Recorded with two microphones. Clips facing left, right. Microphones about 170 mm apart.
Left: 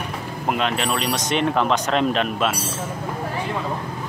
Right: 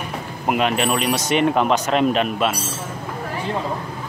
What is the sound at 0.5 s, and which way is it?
Speech, 10° right (ahead or behind).